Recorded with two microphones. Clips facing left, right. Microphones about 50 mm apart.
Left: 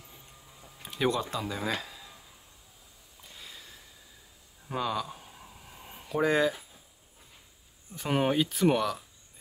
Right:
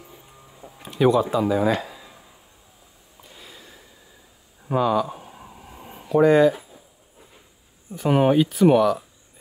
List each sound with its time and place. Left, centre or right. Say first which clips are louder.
0.8 s speech: right 10 dB; centre
3.2 s sniff: right 3 dB; centre
4.7 s speech: right 11 dB; centre
5.0 s a sound: right 9 dB; centre
6.0 s speech: right 10 dB; centre
7.9 s speech: right 9 dB; centre